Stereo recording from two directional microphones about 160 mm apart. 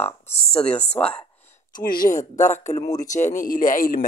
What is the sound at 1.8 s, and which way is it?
Speech, 60° left (ahead or behind).